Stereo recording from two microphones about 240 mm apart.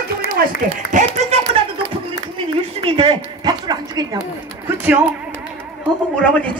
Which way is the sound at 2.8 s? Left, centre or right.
Right.